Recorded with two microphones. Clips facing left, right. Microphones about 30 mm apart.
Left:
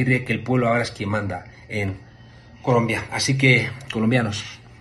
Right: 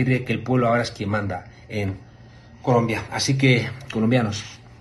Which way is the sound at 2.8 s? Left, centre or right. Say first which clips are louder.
Left 1 dB; left.